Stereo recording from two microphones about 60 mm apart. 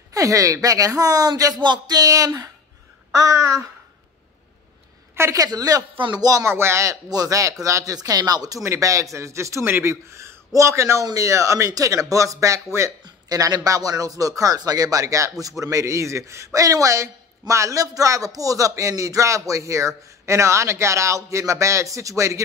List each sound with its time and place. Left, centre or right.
0.1 s speech: right
5.3 s speech: right
6.4 s speech: right
6.9 s speech: right
8.6 s speech: right
13.3 s speech: right